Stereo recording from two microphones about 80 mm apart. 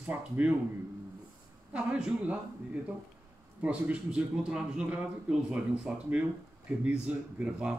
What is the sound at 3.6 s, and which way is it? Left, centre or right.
A man's voice, centre.